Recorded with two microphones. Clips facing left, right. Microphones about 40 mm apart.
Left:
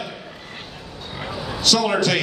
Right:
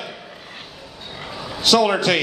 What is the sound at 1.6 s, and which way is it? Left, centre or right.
Speech, centre.